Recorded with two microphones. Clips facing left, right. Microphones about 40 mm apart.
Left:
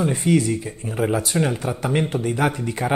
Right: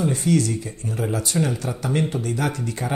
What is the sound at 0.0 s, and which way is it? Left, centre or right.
Speech, left.